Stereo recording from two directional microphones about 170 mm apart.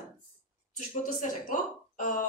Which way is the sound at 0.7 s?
50° left (ahead or behind).